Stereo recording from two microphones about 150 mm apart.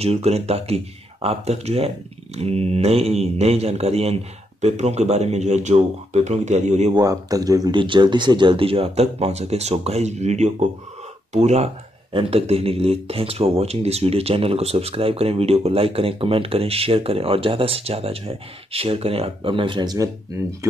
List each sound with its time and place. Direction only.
0.0 s speech: 45° right (ahead or behind)
6.9 s speech: 25° right (ahead or behind)